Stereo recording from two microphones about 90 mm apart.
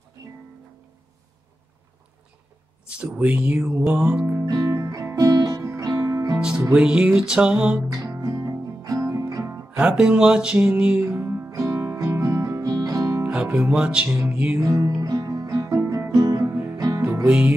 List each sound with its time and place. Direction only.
3.0 s music: 15° right (ahead or behind)
3.9 s music: 25° right (ahead or behind)
4.5 s music: 40° right (ahead or behind)
6.7 s music: 10° right (ahead or behind)
7.9 s guitar: 35° right (ahead or behind)
8.2 s music: 40° right (ahead or behind)
9.7 s music: 10° right (ahead or behind); by 13.2 s 35° right (ahead or behind)
13.2 s speech: 15° right (ahead or behind)
14.0 s music: 25° right (ahead or behind)
14.3 s music: 15° right (ahead or behind)
14.6 s music: 35° right (ahead or behind)
14.9 s music: 45° right (ahead or behind)
17.3 s music: 15° right (ahead or behind)